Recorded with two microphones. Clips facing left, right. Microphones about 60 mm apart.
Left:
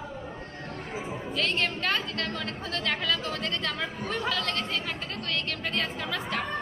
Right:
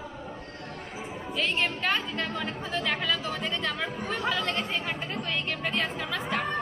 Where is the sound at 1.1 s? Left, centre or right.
Centre.